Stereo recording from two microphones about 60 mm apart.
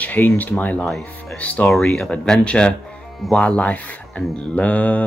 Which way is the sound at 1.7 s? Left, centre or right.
Centre.